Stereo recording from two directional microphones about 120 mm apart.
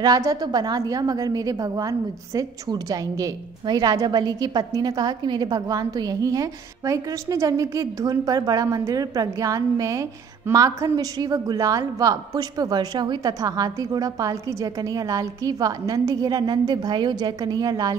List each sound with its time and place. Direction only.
0.0 s a woman's voice: 30° right (ahead or behind)